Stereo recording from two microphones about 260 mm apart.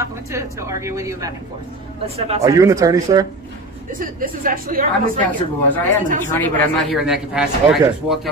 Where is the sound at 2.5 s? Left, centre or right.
Centre.